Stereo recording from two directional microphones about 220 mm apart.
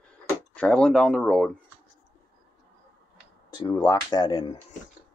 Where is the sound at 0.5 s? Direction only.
5° left (ahead or behind).